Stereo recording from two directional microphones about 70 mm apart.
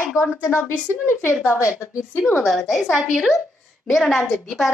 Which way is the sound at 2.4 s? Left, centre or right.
Centre.